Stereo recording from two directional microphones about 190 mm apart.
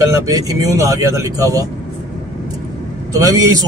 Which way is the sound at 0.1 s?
20° right (ahead or behind).